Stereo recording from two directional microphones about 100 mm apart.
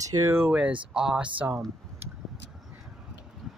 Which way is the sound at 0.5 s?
10° right (ahead or behind).